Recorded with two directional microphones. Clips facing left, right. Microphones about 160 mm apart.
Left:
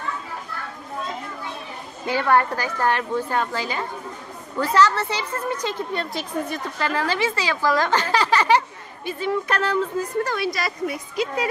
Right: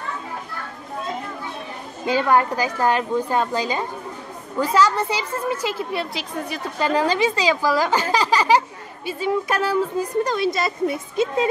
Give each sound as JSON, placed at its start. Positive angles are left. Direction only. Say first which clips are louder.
{"t": 2.0, "sound": "a woman's voice", "louder": "right 1 dB", "side_deg": -15}
{"t": 6.8, "sound": "a woman's voice", "louder": "right 5 dB", "side_deg": -15}